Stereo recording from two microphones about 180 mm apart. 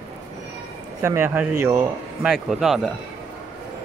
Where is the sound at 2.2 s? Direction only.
Centre (ahead or behind).